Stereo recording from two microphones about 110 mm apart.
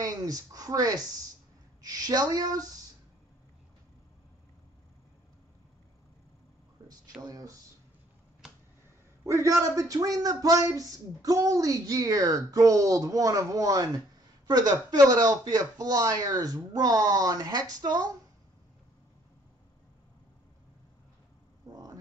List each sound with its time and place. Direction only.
0.0 s speech: 35° right (ahead or behind)
7.2 s speech: 35° right (ahead or behind)
9.2 s speech: 30° right (ahead or behind)
21.7 s hum: 40° right (ahead or behind)